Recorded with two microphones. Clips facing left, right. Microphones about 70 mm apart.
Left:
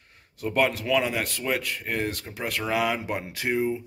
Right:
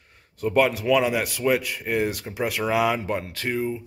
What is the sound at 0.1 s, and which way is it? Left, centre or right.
A man's voice, centre.